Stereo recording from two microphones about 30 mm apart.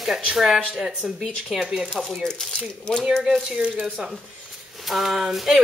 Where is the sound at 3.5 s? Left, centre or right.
Right.